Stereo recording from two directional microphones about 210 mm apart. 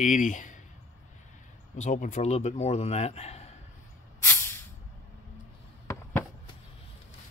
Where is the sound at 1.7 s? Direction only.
35° left (ahead or behind).